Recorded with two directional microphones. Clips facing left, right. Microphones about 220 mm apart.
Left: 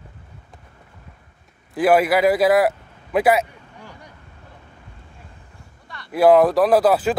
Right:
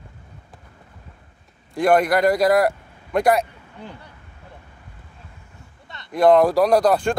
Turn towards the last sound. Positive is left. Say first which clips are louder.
# left 1 dB
turn(degrees=5)  # may be behind; listen again after turning